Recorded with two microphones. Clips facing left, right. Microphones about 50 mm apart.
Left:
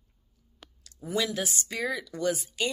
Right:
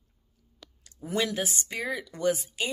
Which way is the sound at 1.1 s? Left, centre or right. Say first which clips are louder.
Right 1 dB; right.